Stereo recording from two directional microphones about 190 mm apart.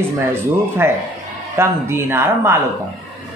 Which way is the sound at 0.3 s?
15° right (ahead or behind).